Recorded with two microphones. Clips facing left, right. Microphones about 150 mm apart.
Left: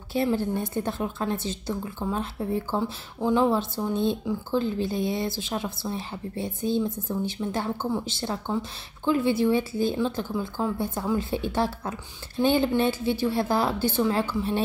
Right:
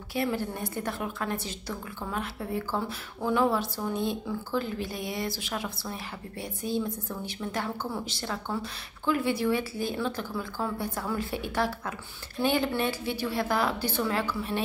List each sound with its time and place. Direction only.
0.1 s speech: 25° left (ahead or behind)
2.8 s speech: 15° left (ahead or behind)
3.3 s speech: 25° left (ahead or behind)